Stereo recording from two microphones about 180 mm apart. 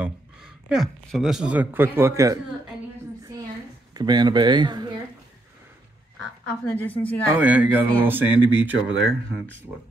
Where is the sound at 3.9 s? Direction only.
25° right (ahead or behind).